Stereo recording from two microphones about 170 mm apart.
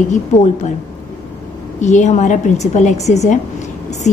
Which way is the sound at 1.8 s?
45° left (ahead or behind).